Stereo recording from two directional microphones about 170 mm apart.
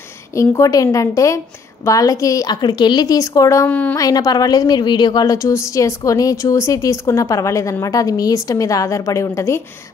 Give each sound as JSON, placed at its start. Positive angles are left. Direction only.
{"t": 0.3, "sound": "a woman's voice", "side_deg": 15}
{"t": 4.0, "sound": "a woman's voice", "side_deg": 20}